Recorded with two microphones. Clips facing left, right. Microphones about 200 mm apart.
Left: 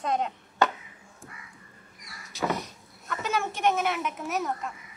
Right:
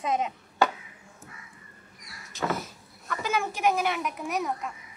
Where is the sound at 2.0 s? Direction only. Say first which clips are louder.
Left 1 dB; centre (ahead or behind).